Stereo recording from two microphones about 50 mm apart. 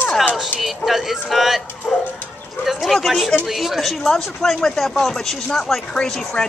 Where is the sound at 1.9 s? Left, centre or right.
Left.